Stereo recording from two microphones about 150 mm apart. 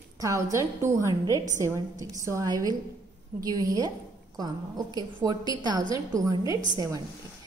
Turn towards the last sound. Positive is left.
turn(degrees=-25)  # may be behind; listen again after turning